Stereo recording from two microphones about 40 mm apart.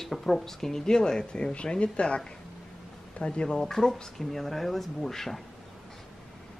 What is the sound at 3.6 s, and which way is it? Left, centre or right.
Speech, centre.